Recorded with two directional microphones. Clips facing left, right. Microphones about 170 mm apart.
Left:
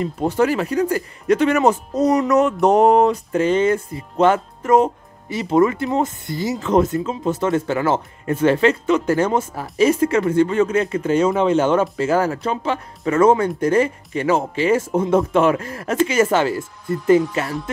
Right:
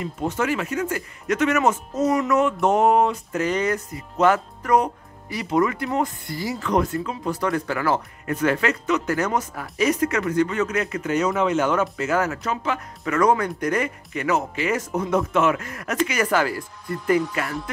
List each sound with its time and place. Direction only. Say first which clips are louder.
0.0 s speech: left 6 dB; 35° left (ahead or behind)